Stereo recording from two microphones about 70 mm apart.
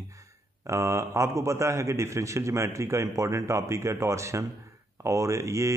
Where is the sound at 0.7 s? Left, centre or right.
Right.